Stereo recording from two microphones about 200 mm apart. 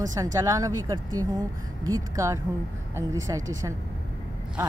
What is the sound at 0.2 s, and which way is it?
Speech, 15° right (ahead or behind).